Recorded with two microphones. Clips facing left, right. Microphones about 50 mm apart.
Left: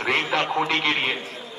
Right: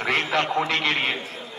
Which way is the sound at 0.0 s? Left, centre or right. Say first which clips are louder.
Even; centre.